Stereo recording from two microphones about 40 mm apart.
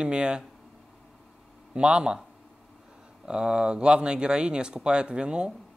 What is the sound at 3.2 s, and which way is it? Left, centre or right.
Speech, right.